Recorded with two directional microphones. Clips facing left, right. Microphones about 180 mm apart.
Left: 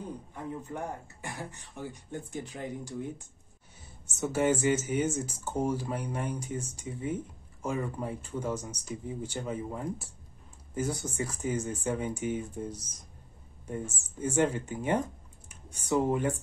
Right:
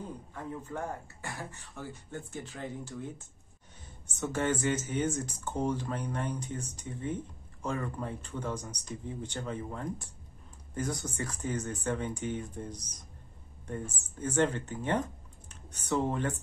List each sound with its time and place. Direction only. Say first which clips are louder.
0.3 s speech: even; 20° left (ahead or behind)